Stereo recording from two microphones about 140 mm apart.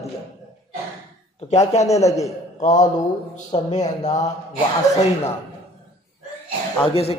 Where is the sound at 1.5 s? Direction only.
50° left (ahead or behind).